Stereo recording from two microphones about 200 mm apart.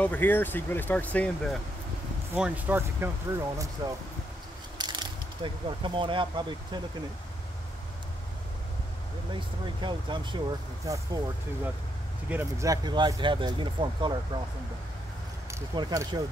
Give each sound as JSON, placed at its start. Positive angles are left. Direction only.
{"t": 0.0, "sound": "speech", "side_deg": 10}
{"t": 2.3, "sound": "speech", "side_deg": -5}
{"t": 4.7, "sound": "speech", "side_deg": -20}
{"t": 9.3, "sound": "speech", "side_deg": -25}
{"t": 12.3, "sound": "speech", "side_deg": -10}
{"t": 15.5, "sound": "speech", "side_deg": -20}